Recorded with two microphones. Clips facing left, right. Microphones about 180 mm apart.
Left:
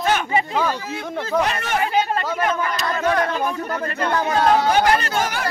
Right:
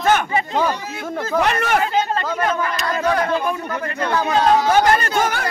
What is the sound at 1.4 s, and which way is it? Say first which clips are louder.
Speech: right 4 dB; 65° right (ahead or behind).